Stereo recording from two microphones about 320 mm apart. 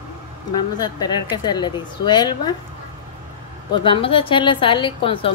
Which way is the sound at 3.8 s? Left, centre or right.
Centre.